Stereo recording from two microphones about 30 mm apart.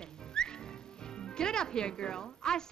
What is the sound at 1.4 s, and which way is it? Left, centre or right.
Speech, left.